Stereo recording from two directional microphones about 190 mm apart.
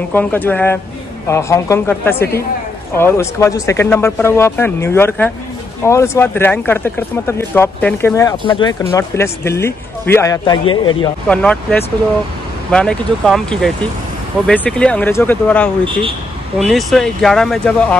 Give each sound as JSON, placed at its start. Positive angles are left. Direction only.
{"t": 0.1, "sound": "speech", "side_deg": 10}
{"t": 8.9, "sound": "speech", "side_deg": 15}
{"t": 11.2, "sound": "speech", "side_deg": 5}
{"t": 15.8, "sound": "speech", "side_deg": -25}
{"t": 16.5, "sound": "speech", "side_deg": 0}